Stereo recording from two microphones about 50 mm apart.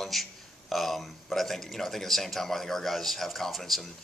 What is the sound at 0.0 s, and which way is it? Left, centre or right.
Speech, centre.